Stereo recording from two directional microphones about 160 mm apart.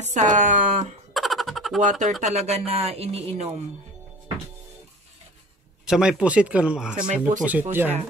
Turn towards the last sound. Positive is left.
turn(degrees=-10)  # may be behind; listen again after turning